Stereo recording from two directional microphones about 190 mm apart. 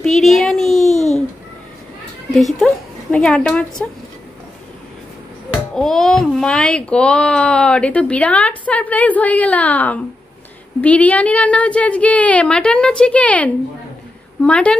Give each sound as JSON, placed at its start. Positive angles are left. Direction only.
{"t": 0.0, "sound": "a sound", "side_deg": 0}
{"t": 2.3, "sound": "a woman's voice", "side_deg": 0}
{"t": 5.8, "sound": "a child's voice", "side_deg": 0}